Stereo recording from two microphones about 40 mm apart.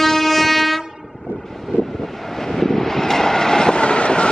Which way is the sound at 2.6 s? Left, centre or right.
Centre.